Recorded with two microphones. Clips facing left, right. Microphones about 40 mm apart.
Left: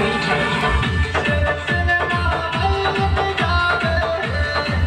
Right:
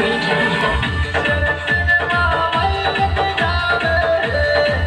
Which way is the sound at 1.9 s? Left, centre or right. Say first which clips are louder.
Right 4 dB; right.